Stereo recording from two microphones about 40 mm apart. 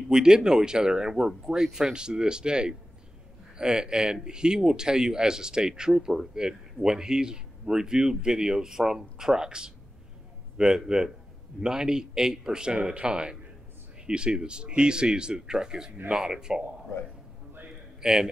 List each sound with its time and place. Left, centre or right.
0.1 s speech: centre
18.0 s speech: centre